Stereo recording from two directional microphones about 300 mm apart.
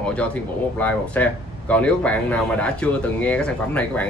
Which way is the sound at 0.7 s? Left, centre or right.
Centre.